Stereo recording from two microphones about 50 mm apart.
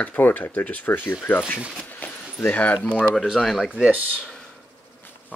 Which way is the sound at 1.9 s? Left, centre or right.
Left.